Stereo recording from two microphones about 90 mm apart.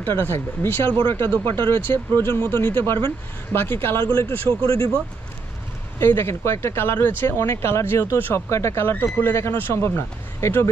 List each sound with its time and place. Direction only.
0.0 s speech: 25° left (ahead or behind)
4.6 s speech: 40° left (ahead or behind)
5.9 s speech: 25° left (ahead or behind)